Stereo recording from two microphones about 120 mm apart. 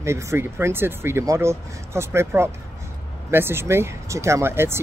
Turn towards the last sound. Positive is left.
turn(degrees=-20)  # may be behind; listen again after turning